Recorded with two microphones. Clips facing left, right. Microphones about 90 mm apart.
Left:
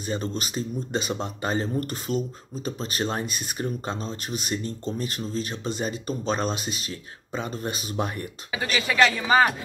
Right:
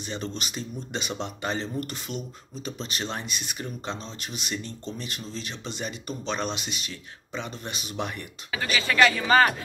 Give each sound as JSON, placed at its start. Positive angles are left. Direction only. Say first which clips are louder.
{"t": 0.0, "sound": "speech", "louder": "left 4 dB", "side_deg": 40}
{"t": 8.7, "sound": "speech", "louder": "even", "side_deg": 15}